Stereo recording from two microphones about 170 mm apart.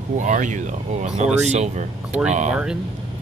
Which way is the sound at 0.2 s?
45° right (ahead or behind).